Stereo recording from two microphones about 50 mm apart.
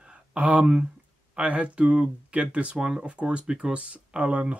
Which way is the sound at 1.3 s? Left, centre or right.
Right.